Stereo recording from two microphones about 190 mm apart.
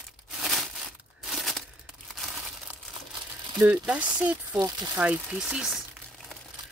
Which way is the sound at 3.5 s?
10° right (ahead or behind).